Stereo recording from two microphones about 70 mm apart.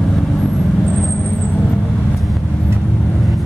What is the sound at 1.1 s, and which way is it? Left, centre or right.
Vehicle, left.